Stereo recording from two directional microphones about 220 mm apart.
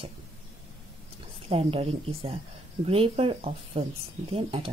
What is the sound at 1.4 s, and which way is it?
Speech, 25° right (ahead or behind).